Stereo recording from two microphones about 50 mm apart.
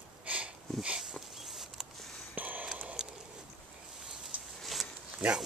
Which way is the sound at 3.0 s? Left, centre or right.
Centre.